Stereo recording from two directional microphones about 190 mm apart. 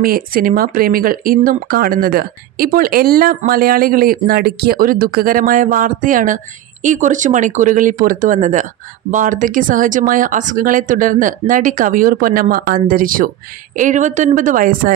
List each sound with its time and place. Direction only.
0.0 s speech: 50° right (ahead or behind)